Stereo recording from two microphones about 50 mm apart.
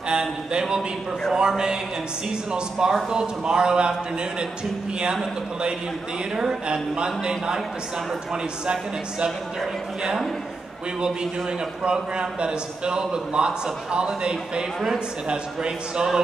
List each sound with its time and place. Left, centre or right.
0.1 s a man's voice: centre
2.5 s a man's voice: centre
5.1 s a man's voice: centre
11.8 s a man's voice: centre